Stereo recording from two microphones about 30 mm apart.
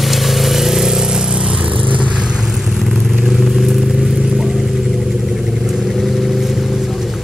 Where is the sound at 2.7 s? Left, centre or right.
Centre.